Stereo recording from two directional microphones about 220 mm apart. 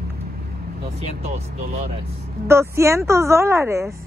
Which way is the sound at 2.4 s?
10° right (ahead or behind).